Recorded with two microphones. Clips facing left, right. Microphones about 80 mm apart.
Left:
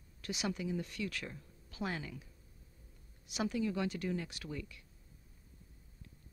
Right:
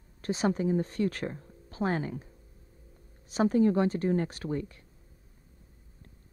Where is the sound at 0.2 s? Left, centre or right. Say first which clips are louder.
Right 10 dB; right.